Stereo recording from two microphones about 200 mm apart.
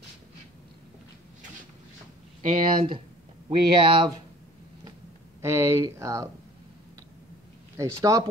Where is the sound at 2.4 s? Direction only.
25° right (ahead or behind).